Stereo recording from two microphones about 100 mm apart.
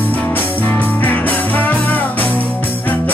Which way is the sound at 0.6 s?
15° left (ahead or behind).